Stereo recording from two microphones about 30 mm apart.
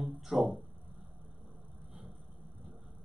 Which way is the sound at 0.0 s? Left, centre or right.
Centre.